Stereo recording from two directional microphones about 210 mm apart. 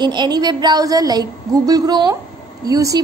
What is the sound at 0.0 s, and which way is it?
A woman's voice, 20° right (ahead or behind).